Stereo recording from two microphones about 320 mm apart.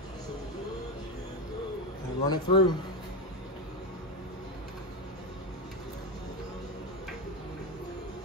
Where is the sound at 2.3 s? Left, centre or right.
Centre.